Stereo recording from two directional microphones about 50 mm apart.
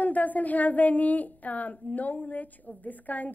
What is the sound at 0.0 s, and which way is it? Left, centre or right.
Speech, left.